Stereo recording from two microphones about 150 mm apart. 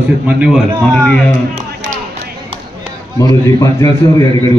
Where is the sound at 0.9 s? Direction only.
10° left (ahead or behind).